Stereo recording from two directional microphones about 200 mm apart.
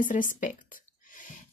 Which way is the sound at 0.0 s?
40° left (ahead or behind).